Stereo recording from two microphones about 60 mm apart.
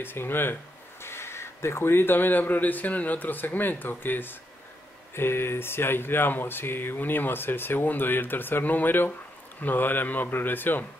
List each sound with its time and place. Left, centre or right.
0.0 s speech: left